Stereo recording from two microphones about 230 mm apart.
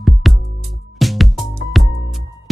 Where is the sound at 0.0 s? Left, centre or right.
Centre.